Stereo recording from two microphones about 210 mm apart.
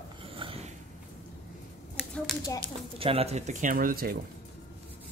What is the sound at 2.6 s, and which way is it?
Speech, 25° right (ahead or behind).